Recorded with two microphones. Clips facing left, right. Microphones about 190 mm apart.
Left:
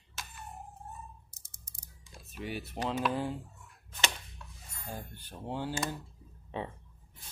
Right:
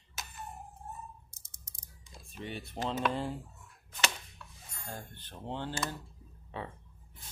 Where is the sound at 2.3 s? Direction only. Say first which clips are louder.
Left 2 dB; 5° left (ahead or behind).